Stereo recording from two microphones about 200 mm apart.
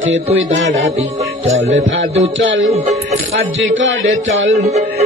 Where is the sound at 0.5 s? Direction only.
70° right (ahead or behind).